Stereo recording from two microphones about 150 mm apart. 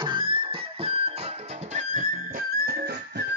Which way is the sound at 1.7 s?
55° right (ahead or behind).